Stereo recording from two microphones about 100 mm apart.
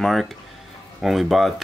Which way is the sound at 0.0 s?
Centre (ahead or behind).